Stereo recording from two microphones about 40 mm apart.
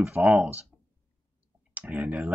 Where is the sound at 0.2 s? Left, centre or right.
Centre.